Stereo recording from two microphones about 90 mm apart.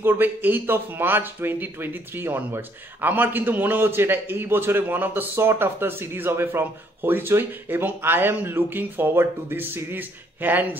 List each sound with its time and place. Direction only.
0.0 s speech: 20° right (ahead or behind)